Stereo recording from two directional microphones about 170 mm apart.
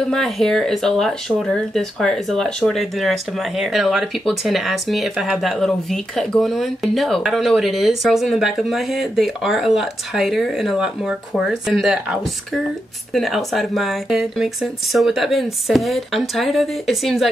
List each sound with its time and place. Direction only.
0.1 s speech: centre (ahead or behind)